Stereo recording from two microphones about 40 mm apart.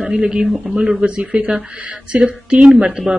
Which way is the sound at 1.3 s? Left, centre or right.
Right.